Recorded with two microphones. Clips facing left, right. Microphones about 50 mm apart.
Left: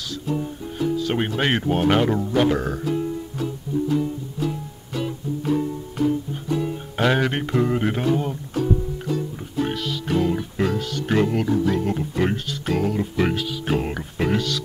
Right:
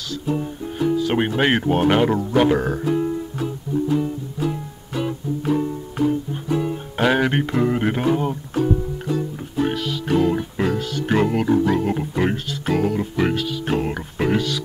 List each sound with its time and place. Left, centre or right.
0.3 s music: centre
0.9 s speech: centre
2.8 s music: right
9.6 s music: centre
11.4 s speech: right
11.7 s speech: centre